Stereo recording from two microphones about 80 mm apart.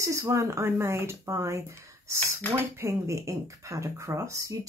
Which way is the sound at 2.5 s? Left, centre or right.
Right.